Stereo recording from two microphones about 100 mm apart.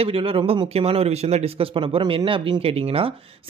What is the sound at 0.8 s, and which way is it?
Speech, 85° right.